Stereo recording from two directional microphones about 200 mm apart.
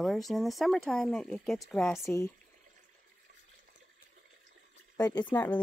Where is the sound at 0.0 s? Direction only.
Centre (ahead or behind).